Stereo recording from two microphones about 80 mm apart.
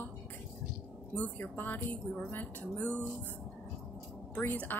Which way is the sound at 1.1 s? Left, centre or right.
Left.